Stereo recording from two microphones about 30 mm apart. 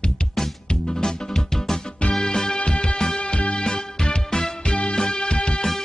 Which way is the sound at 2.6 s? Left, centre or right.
Left.